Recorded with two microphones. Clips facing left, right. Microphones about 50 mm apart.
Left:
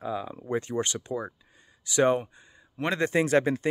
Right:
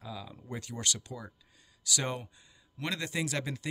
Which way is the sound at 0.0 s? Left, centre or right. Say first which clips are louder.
Left 11 dB; left.